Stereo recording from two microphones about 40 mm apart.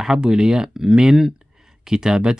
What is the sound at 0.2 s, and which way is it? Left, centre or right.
Speech, centre.